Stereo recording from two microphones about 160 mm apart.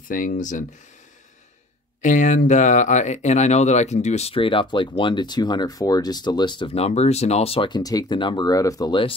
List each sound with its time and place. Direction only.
0.1 s speech: 55° left (ahead or behind)
2.0 s speech: 50° left (ahead or behind); by 9.1 s 30° left (ahead or behind)